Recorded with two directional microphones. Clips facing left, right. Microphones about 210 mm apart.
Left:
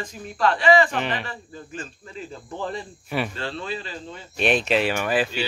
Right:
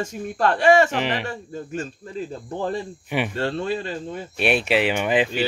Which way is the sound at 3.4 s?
50° right (ahead or behind).